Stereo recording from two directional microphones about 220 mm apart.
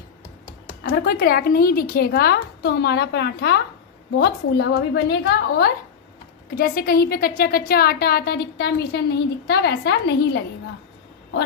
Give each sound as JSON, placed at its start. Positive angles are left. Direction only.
{"t": 0.8, "sound": "a woman's voice", "side_deg": 45}